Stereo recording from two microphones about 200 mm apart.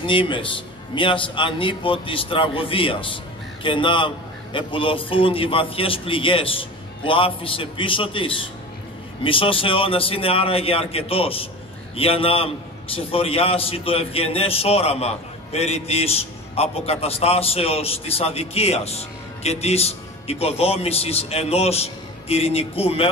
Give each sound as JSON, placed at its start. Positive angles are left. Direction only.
{"t": 0.0, "sound": "a man's voice", "side_deg": 25}